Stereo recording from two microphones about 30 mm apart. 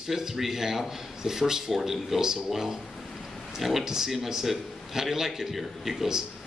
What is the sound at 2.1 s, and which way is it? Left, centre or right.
A man's voice, centre.